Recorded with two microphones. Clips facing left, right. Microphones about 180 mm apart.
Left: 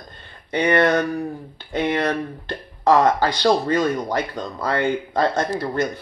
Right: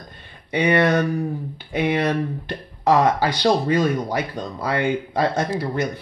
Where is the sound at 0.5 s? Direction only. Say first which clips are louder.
Even; 10° right (ahead or behind).